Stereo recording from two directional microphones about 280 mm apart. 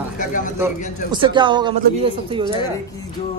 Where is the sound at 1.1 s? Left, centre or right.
Centre.